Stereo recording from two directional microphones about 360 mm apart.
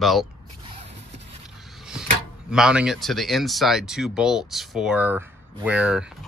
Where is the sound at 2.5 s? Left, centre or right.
Centre.